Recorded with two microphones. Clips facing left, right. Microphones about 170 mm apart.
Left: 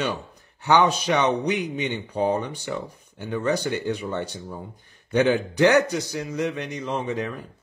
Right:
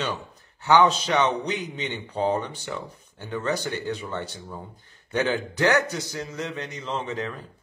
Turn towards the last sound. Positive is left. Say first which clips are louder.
# left 3 dB
turn(degrees=15)  # may be behind; listen again after turning